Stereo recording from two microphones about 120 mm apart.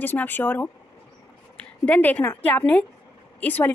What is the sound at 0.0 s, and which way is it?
A woman's voice, 15° left (ahead or behind).